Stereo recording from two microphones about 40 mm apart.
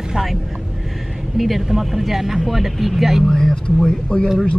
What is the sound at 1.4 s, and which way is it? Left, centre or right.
Speech, centre.